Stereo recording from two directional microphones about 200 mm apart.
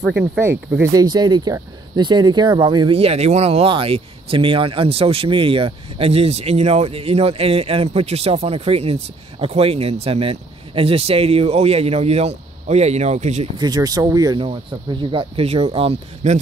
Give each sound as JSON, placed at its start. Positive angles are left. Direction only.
{"t": 0.2, "sound": "speech", "side_deg": -10}
{"t": 13.6, "sound": "speech", "side_deg": -20}